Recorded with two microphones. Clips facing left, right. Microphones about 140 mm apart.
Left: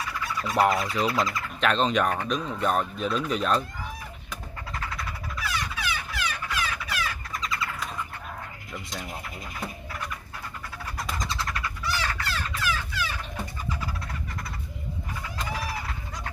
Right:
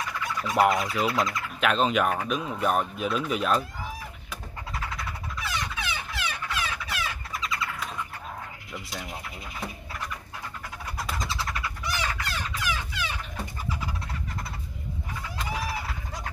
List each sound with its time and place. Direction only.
0.4 s speech: centre (ahead or behind)
5.4 s a sound: 25° right (ahead or behind)
7.3 s vehicle: centre (ahead or behind)
8.7 s speech: 5° right (ahead or behind)
11.0 s vehicle: 5° right (ahead or behind)
11.8 s frog: 15° right (ahead or behind)
12.5 s a sound: 15° right (ahead or behind)